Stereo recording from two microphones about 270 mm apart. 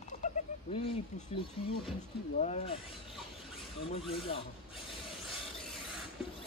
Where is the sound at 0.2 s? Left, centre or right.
Left.